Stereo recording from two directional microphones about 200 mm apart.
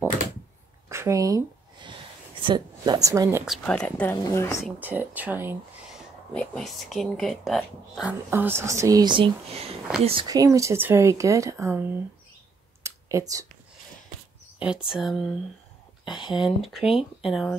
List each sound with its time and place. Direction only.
0.8 s a sound: 15° right (ahead or behind)
2.4 s speech: 20° right (ahead or behind)
3.4 s speech: centre (ahead or behind)
4.6 s speech: 10° right (ahead or behind)
6.3 s speech: 5° left (ahead or behind); by 12.0 s 10° right (ahead or behind)
12.8 s clicking: 15° right (ahead or behind)
14.9 s speech: centre (ahead or behind)
16.2 s speech: 25° left (ahead or behind)
16.9 s speech: centre (ahead or behind)